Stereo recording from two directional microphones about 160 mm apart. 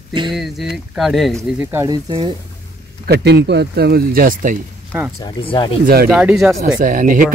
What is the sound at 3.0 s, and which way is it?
Speech, 90° right.